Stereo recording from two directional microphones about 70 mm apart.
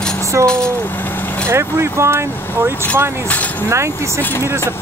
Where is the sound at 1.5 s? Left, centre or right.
Right.